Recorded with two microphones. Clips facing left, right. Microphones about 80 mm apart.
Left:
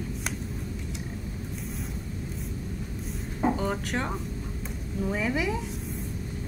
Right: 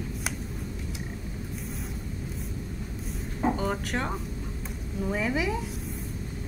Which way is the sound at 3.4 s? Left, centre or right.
Centre.